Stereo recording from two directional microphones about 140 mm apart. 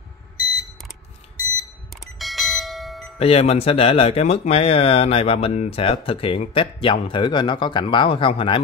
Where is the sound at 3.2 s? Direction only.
45° left (ahead or behind).